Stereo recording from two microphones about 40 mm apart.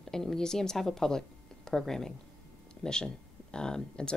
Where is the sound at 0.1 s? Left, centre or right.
Centre.